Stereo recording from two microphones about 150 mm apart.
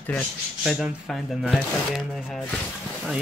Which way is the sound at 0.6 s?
5° right (ahead or behind).